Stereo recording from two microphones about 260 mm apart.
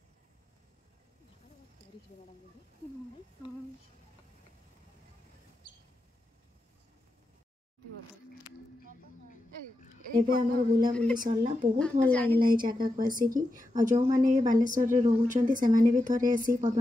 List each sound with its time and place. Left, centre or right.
10.1 s a woman's voice: right
12.1 s a woman's voice: centre
12.4 s a woman's voice: right